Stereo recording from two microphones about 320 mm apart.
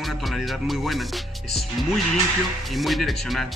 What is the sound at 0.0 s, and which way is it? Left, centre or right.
Speech, centre.